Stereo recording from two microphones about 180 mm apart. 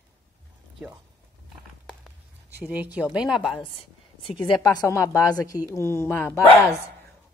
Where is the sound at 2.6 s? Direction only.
10° right (ahead or behind).